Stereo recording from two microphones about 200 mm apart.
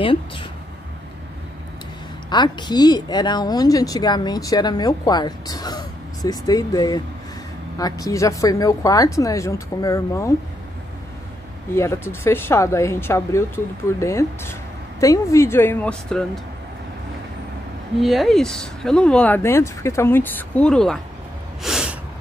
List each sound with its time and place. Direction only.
0.0 s speech: 25° left (ahead or behind)
2.2 s speech: 20° left (ahead or behind)
11.7 s speech: 15° left (ahead or behind)
18.0 s speech: centre (ahead or behind)
21.6 s snort: centre (ahead or behind)